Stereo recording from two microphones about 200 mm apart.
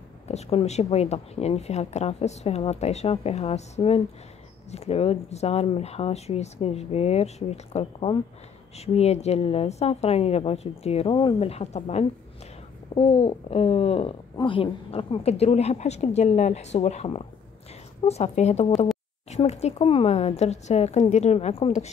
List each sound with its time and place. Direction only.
0.3 s speech: 30° left (ahead or behind)